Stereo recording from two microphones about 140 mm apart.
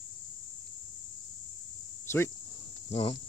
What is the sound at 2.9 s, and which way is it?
Speech, 45° left (ahead or behind).